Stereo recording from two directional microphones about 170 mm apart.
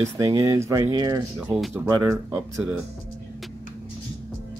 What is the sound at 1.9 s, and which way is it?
Speech, 15° right (ahead or behind).